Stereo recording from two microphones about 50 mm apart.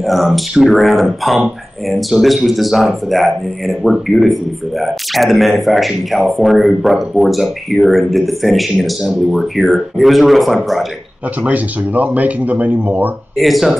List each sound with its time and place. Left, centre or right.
0.0 s speech: centre
11.4 s speech: right
13.4 s speech: centre